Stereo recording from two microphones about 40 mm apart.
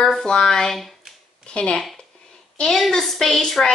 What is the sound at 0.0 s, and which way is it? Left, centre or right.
Speech, centre.